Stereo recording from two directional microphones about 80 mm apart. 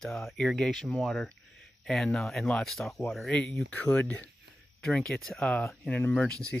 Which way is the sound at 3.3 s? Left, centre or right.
Centre.